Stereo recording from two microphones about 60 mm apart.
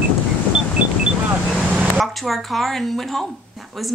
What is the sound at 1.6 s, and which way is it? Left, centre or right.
Vehicle, centre.